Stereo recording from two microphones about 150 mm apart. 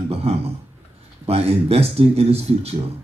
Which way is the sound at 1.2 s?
40° right (ahead or behind).